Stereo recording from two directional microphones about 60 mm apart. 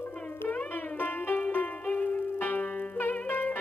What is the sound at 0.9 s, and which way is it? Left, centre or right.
Music, left.